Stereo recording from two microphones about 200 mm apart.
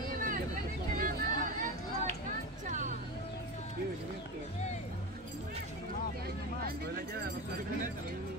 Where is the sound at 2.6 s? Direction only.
40° right (ahead or behind).